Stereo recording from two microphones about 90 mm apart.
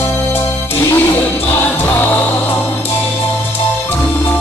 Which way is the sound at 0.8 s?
25° left (ahead or behind).